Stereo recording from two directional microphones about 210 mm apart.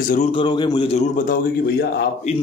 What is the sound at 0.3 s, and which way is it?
Speech, 20° left (ahead or behind).